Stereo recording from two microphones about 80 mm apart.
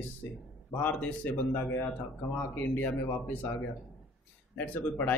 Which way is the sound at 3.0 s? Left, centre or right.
Left.